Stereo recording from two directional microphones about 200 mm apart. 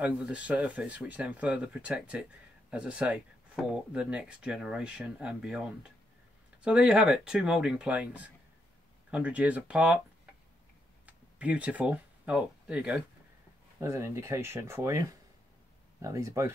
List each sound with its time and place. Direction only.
0.0 s speech: 5° right (ahead or behind)
11.1 s speech: 5° right (ahead or behind)